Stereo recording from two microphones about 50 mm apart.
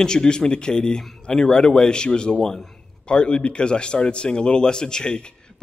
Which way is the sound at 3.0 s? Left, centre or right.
Left.